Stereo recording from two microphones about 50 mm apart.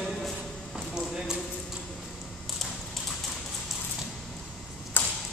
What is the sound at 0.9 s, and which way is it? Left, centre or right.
Clip-clop, centre.